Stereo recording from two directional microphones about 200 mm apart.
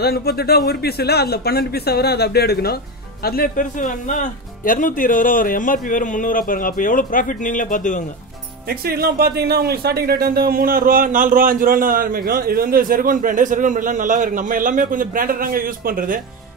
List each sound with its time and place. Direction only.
0.0 s speech: 50° left (ahead or behind)
8.6 s speech: 50° right (ahead or behind)